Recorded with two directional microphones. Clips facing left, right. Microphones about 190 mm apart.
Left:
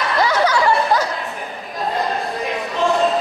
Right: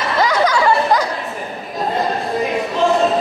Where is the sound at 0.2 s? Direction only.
10° right (ahead or behind).